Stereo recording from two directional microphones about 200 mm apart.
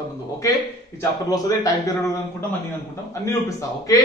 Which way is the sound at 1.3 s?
15° left (ahead or behind).